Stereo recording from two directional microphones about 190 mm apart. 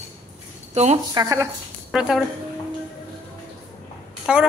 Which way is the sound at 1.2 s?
15° right (ahead or behind).